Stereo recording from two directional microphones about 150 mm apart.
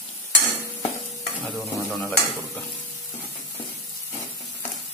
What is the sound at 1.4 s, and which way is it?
Stir, centre (ahead or behind).